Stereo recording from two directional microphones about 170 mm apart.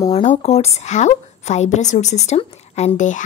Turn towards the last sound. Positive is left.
turn(degrees=45)  # may be behind; listen again after turning